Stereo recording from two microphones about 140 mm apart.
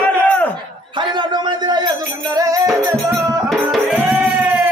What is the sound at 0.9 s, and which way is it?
Speech, 35° right (ahead or behind).